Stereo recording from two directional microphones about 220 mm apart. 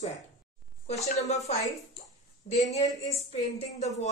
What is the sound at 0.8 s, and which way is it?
A woman's voice, 30° left (ahead or behind).